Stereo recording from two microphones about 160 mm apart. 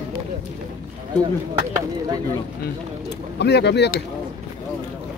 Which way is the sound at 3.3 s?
90° left.